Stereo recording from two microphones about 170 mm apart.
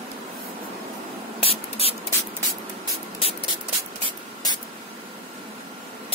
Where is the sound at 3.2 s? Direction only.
30° left (ahead or behind).